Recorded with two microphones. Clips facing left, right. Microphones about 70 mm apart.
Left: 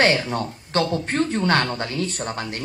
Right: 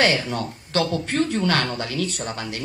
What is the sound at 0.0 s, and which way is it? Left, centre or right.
Speech, left.